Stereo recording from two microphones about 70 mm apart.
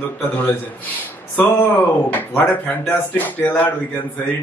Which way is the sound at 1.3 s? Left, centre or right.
Left.